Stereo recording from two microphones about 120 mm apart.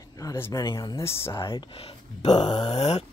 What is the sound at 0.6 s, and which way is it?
Speech, 30° left (ahead or behind).